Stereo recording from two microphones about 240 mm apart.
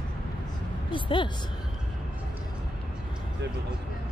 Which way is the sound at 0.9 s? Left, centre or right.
Centre.